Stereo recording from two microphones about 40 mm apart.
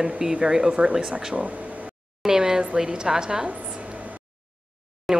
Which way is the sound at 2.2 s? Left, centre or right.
Centre.